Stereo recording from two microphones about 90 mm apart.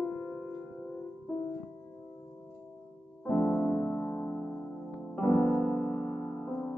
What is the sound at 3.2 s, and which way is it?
Music, 15° left (ahead or behind).